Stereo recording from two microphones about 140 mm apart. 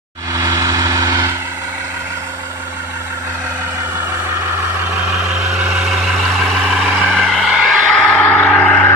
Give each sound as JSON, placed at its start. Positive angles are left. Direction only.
{"t": 0.3, "sound": "vehicle", "side_deg": -20}
{"t": 5.2, "sound": "vehicle", "side_deg": -5}